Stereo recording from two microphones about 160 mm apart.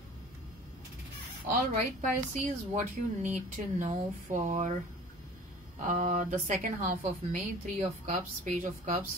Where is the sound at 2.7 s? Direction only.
50° right (ahead or behind).